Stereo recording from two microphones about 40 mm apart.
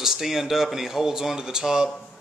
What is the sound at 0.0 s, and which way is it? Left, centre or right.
A man's voice, centre.